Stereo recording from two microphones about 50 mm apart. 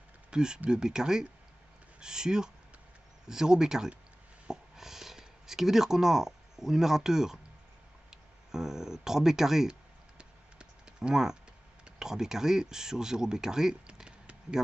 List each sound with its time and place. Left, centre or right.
0.3 s speech: centre
10.1 s typing: centre
11.8 s speech: centre